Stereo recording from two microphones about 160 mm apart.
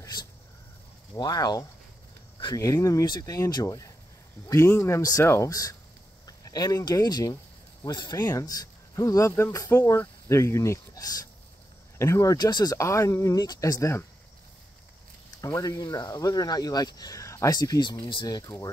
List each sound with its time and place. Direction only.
1.1 s speech: 25° left (ahead or behind)
15.4 s speech: 20° left (ahead or behind)